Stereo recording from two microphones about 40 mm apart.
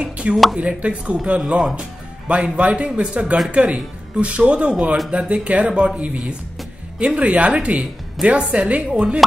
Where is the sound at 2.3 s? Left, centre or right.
Right.